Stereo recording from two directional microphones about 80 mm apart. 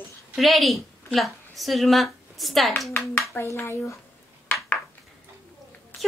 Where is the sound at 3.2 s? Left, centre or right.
Left.